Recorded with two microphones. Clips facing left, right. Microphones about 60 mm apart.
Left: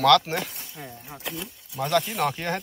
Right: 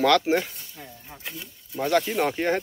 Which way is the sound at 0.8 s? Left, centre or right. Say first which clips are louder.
Left 4 dB; centre.